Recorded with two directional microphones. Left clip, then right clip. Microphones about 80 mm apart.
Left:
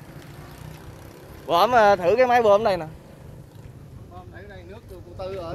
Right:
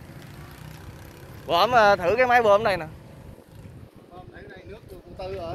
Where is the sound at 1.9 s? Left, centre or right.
Left.